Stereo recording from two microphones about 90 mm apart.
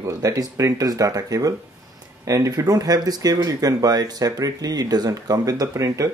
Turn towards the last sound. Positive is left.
turn(degrees=-35)  # may be behind; listen again after turning